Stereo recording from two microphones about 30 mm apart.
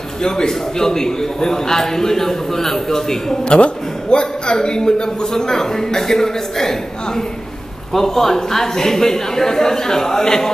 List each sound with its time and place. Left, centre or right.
0.2 s a man's voice: left
3.4 s a man's voice: left